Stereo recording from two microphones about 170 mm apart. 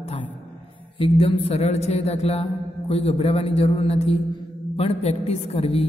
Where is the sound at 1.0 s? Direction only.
35° left (ahead or behind).